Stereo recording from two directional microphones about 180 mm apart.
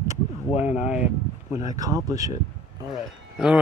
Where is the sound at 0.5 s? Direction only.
40° left (ahead or behind).